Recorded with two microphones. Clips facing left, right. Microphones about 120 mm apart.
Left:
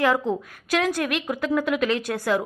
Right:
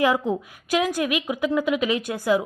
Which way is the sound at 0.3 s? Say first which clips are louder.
Right 1 dB; centre (ahead or behind).